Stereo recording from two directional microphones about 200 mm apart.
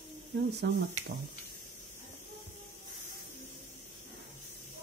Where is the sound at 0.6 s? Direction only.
55° right (ahead or behind).